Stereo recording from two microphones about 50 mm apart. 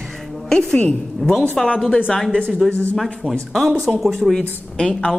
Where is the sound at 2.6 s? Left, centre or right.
Centre.